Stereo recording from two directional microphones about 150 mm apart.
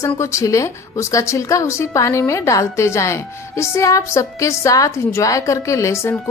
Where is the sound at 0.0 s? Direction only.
20° left (ahead or behind).